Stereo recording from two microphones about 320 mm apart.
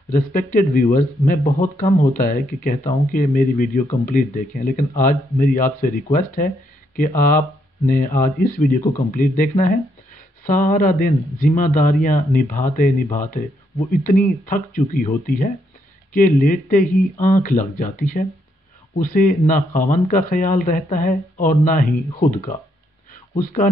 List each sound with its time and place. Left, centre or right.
0.1 s speech: left
23.3 s speech: left